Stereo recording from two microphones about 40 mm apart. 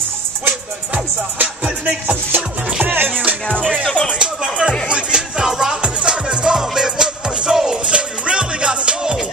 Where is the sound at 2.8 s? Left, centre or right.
Right.